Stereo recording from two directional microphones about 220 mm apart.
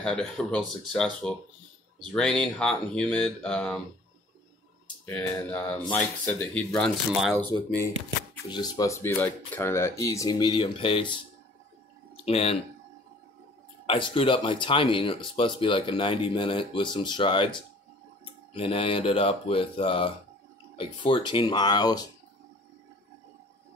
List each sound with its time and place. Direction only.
0.0 s speech: 5° left (ahead or behind)
5.0 s speech: 10° left (ahead or behind)
8.5 s speech: 20° left (ahead or behind)
12.3 s speech: 25° left (ahead or behind)
13.8 s speech: 20° left (ahead or behind)